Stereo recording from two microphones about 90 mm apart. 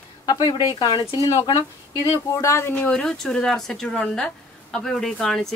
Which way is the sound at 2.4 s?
35° left (ahead or behind).